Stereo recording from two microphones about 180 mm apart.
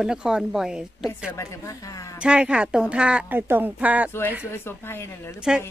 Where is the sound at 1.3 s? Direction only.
15° left (ahead or behind).